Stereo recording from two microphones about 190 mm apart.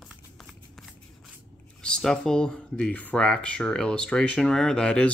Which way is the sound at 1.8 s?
5° left (ahead or behind).